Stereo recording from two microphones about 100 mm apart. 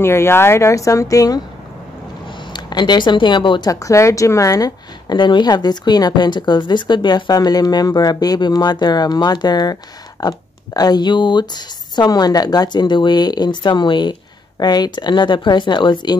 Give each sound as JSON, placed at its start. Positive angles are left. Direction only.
{"t": 0.0, "sound": "speech", "side_deg": 25}
{"t": 2.2, "sound": "speech", "side_deg": 50}
{"t": 3.8, "sound": "a woman's voice", "side_deg": 30}